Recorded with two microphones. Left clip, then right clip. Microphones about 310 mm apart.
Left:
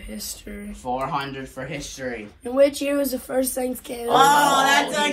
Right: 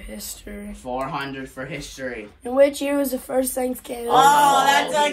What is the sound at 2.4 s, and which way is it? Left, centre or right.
Speech, right.